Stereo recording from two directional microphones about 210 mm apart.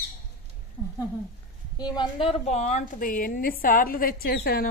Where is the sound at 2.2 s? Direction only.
30° left (ahead or behind); by 4.7 s 45° left (ahead or behind).